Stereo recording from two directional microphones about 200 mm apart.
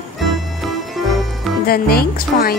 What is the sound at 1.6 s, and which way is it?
Speech, 50° left (ahead or behind).